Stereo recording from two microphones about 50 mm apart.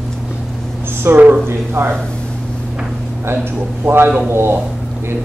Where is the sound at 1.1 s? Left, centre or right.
Right.